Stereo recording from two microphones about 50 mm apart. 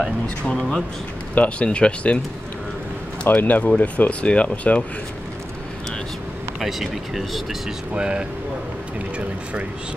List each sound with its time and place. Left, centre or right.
0.6 s speech: centre
1.3 s speech: left
3.3 s speech: left
6.6 s speech: centre
7.9 s speech: centre